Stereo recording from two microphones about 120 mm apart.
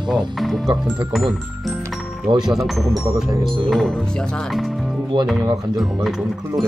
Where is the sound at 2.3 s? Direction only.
45° right (ahead or behind).